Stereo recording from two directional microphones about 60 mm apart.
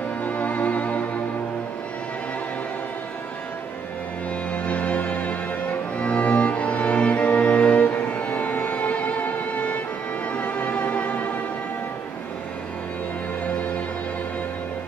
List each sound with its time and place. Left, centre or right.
0.2 s music: left
4.5 s music: left